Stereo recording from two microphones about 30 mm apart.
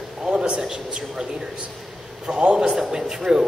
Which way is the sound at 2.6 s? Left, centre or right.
Centre.